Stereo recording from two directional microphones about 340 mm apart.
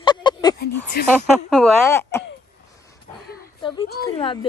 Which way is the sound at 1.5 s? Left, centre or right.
Centre.